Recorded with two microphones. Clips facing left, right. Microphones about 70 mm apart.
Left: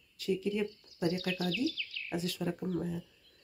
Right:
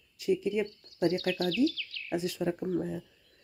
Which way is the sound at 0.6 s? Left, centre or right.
Centre.